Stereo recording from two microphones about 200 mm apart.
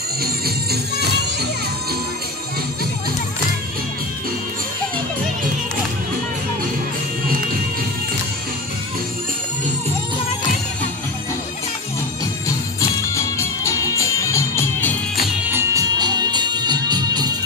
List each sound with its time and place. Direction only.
13.1 s music: 15° left (ahead or behind)
15.4 s music: 15° right (ahead or behind)